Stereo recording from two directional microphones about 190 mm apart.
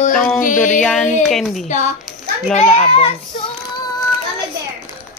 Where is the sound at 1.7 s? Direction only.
40° left (ahead or behind).